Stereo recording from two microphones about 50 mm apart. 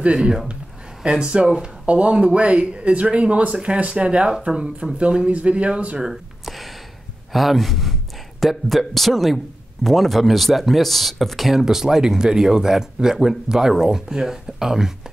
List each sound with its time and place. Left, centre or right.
0.0 s speech: centre
6.4 s a sound: centre
7.3 s speech: centre